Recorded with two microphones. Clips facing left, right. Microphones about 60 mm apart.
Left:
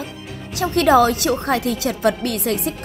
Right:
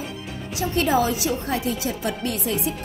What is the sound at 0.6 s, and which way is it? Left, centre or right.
Speech, left.